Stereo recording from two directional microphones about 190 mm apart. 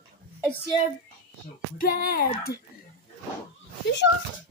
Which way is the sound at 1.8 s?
50° left (ahead or behind).